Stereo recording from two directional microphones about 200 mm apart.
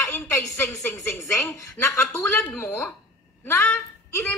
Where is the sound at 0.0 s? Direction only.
15° left (ahead or behind).